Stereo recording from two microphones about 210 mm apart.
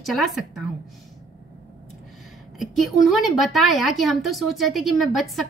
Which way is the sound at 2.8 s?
Centre (ahead or behind).